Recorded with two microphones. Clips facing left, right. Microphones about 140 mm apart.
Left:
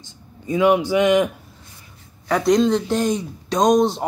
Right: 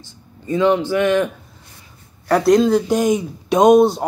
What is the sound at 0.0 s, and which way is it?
Speech, 10° left (ahead or behind).